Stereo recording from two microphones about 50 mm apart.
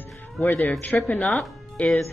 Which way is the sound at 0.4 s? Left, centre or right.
Left.